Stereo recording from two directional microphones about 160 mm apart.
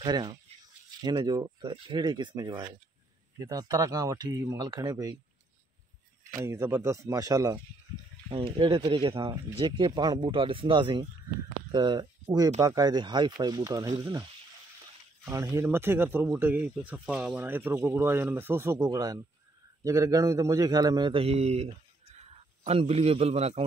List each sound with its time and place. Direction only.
0.0 s speech: 25° right (ahead or behind)
6.4 s speech: 15° right (ahead or behind)
8.3 s speech: 35° right (ahead or behind)
15.2 s speech: 20° right (ahead or behind); by 21.6 s 40° right (ahead or behind)
22.7 s speech: 40° right (ahead or behind)